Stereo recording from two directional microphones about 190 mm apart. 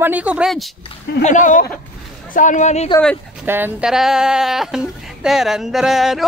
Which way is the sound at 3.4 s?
10° right (ahead or behind).